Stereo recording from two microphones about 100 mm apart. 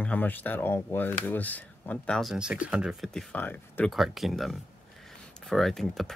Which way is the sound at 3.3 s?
15° left (ahead or behind).